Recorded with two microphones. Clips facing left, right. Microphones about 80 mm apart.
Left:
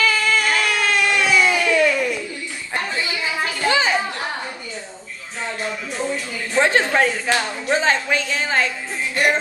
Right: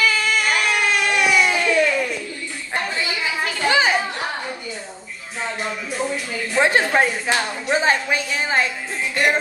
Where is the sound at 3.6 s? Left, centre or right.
Right.